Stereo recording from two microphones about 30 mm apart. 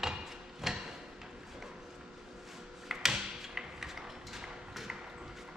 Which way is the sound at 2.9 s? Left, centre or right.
Centre.